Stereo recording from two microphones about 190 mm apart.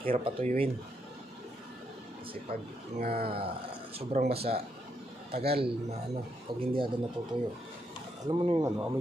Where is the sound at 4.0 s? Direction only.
30° right (ahead or behind).